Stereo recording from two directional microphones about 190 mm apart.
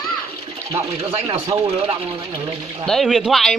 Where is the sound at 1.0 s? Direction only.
30° right (ahead or behind).